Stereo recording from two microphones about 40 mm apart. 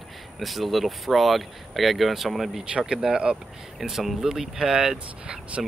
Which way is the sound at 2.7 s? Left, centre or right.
Right.